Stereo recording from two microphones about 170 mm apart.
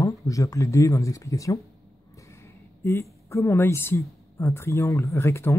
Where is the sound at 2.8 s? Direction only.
15° left (ahead or behind).